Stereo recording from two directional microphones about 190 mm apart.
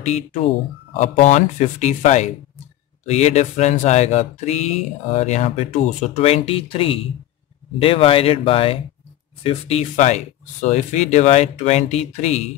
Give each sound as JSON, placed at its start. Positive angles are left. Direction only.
{"t": 0.0, "sound": "speech", "side_deg": 35}